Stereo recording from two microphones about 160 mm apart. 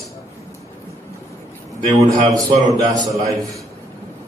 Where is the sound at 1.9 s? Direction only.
20° right (ahead or behind).